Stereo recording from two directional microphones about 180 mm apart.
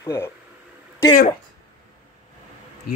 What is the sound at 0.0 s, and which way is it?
Speech, 15° left (ahead or behind).